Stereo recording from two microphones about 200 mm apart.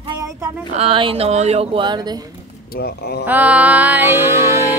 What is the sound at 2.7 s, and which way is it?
Speech, 50° left (ahead or behind).